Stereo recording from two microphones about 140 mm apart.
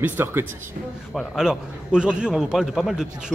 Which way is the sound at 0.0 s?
15° right (ahead or behind).